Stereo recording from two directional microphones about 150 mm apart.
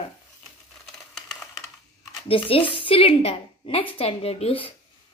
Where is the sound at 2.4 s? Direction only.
35° left (ahead or behind).